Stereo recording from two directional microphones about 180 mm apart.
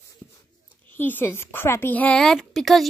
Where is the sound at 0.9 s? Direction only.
10° left (ahead or behind).